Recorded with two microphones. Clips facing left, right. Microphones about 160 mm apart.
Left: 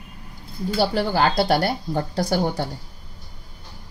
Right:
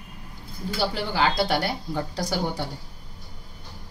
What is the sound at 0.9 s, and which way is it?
Speech, 45° left (ahead or behind).